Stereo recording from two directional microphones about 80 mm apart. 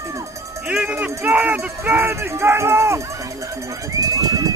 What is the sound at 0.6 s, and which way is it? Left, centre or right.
Speech, centre.